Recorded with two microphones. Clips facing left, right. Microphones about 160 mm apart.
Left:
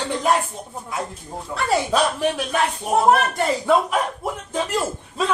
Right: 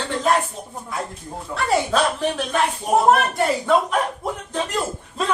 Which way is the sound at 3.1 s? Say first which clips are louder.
Even; centre (ahead or behind).